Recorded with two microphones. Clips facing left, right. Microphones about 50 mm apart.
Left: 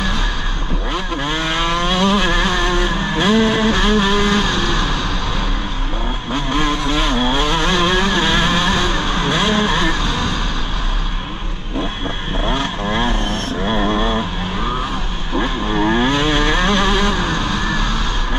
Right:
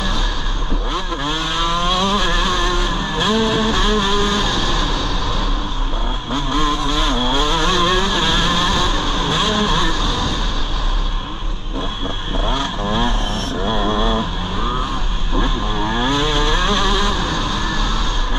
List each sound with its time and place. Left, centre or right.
0.9 s vehicle: left
6.5 s vehicle: left
7.4 s vehicle: left
12.4 s vehicle: left
13.7 s a sound: left
15.3 s vehicle: left